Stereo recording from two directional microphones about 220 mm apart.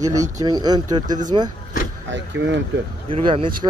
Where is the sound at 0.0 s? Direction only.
15° right (ahead or behind).